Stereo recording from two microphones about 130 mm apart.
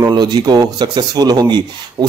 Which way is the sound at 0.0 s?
35° right (ahead or behind).